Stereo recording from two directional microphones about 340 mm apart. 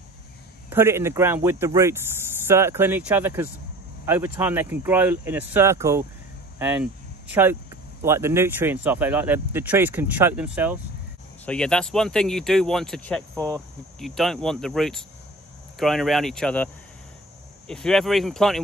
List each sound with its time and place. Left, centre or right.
0.7 s speech: centre